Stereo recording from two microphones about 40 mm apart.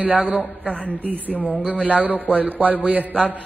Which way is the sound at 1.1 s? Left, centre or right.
Right.